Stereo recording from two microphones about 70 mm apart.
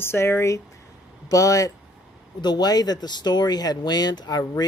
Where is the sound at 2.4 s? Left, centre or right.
Left.